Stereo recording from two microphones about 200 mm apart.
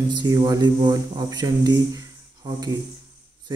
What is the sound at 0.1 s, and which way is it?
Mantra, 20° right (ahead or behind).